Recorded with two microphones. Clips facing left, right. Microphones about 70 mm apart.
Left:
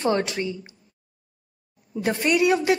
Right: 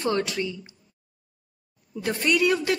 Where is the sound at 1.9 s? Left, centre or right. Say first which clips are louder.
Left 3 dB; left.